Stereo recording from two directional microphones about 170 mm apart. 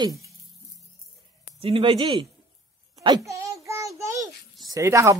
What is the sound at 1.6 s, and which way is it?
Speech, 30° right (ahead or behind).